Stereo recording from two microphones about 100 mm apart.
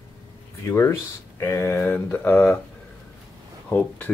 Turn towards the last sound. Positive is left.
turn(degrees=20)  # may be behind; listen again after turning